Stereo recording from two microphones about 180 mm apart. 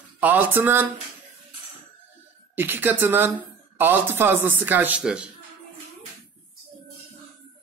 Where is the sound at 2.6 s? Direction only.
10° right (ahead or behind).